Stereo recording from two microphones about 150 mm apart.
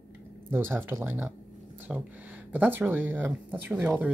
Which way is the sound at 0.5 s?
15° right (ahead or behind).